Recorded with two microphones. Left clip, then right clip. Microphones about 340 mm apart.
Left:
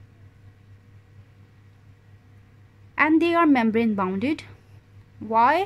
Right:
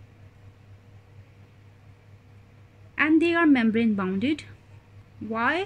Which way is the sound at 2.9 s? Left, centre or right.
Centre.